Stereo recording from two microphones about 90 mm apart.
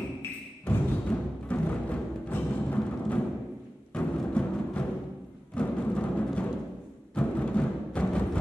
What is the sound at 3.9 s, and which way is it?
Timpani, 15° left (ahead or behind).